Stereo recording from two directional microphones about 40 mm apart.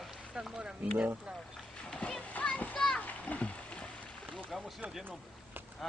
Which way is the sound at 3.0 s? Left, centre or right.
Left.